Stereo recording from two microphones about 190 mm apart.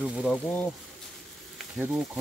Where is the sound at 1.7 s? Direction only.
5° right (ahead or behind).